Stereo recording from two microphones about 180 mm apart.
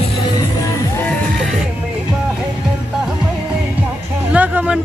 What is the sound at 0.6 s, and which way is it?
Music, 15° left (ahead or behind).